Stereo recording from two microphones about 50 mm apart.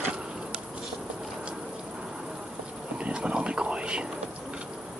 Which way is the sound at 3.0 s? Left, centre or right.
Right.